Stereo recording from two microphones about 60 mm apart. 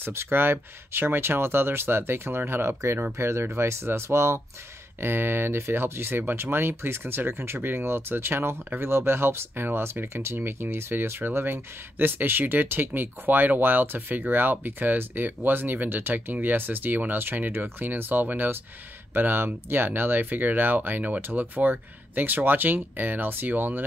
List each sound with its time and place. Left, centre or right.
0.0 s speech: right